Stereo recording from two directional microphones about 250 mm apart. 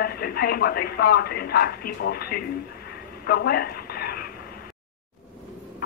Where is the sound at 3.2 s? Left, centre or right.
Left.